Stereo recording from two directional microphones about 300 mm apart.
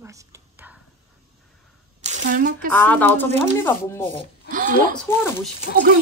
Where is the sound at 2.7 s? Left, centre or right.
Centre.